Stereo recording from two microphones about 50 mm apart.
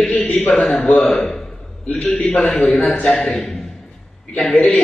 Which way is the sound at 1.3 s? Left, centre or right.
Centre.